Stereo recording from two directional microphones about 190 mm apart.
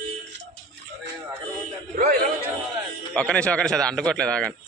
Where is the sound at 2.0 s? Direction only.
50° right (ahead or behind).